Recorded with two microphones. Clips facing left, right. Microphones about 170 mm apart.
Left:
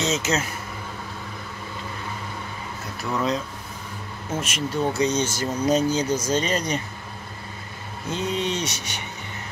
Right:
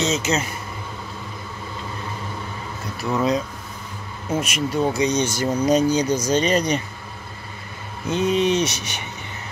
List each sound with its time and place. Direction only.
0.0 s speech: centre (ahead or behind)
3.1 s speech: 15° right (ahead or behind)
4.4 s speech: 15° right (ahead or behind)
8.1 s speech: 20° right (ahead or behind)